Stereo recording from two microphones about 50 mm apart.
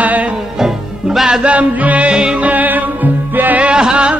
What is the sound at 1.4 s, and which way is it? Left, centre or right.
Music, right.